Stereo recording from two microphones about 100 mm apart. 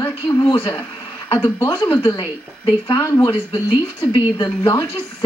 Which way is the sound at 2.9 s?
30° left (ahead or behind).